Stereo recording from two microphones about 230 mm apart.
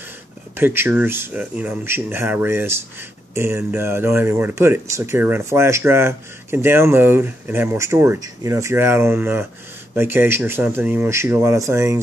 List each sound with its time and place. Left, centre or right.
0.6 s speech: centre